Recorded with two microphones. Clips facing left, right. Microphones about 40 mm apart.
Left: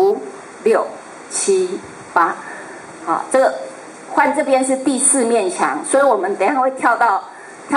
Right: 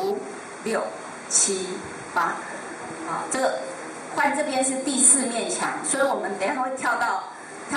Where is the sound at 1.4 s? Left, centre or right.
Centre.